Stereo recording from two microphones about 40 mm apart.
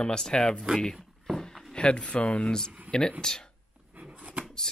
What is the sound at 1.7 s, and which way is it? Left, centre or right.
Speech, left.